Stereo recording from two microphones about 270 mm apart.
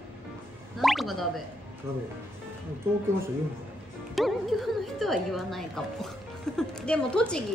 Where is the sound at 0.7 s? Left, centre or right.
Centre.